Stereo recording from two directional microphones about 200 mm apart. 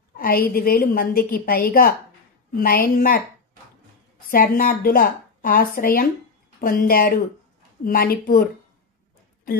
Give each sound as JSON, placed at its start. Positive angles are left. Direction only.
{"t": 0.2, "sound": "a woman's voice", "side_deg": 50}
{"t": 4.3, "sound": "a woman's voice", "side_deg": 45}